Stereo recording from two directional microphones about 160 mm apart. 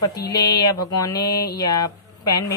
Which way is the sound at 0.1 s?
25° left (ahead or behind).